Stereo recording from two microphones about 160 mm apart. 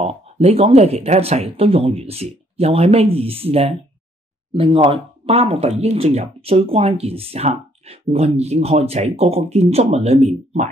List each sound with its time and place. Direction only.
0.0 s speech: 40° right (ahead or behind)